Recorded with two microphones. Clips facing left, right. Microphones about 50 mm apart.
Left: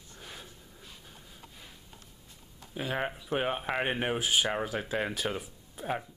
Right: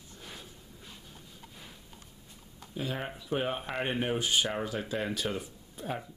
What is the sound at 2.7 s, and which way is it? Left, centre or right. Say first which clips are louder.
Speech: left 3 dB; left.